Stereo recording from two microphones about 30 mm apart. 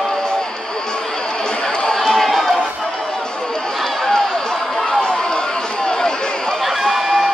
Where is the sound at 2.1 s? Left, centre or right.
Centre.